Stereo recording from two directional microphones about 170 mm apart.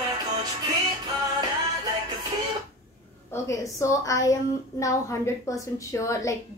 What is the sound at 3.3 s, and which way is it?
A woman's voice, 15° left (ahead or behind).